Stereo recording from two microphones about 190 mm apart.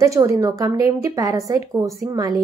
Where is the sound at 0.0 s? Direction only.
15° right (ahead or behind).